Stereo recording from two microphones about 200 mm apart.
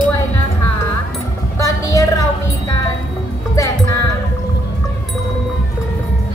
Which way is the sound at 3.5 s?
15° left (ahead or behind).